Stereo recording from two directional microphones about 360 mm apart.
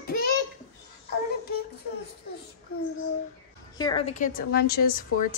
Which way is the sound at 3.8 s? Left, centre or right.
Centre.